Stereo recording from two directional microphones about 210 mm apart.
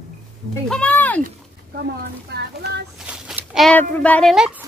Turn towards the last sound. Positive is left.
turn(degrees=-5)  # may be behind; listen again after turning